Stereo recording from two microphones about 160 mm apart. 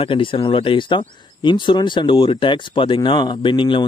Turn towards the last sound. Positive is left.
turn(degrees=30)  # may be behind; listen again after turning